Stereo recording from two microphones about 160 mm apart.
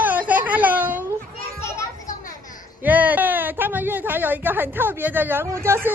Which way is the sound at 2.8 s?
10° right (ahead or behind).